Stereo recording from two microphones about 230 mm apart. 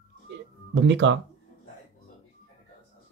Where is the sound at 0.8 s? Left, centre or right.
Right.